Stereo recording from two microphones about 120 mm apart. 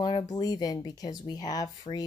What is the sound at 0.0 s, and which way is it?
Speech, 35° left (ahead or behind).